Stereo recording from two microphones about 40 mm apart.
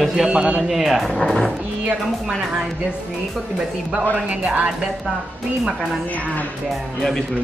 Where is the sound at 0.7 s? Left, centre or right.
Centre.